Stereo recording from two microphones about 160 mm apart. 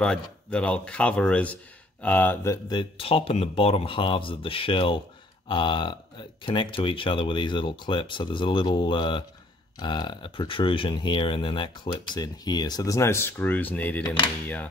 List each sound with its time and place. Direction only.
0.0 s speech: 5° left (ahead or behind)